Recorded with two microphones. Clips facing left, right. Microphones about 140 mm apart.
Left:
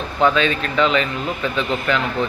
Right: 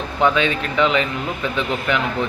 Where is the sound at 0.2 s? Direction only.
15° right (ahead or behind).